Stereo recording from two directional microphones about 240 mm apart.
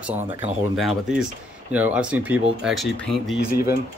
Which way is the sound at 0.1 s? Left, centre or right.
Right.